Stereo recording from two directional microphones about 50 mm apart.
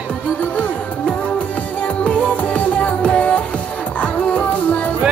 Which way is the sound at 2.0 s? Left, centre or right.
Left.